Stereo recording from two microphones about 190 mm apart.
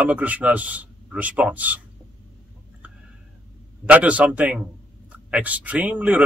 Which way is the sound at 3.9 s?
5° right (ahead or behind).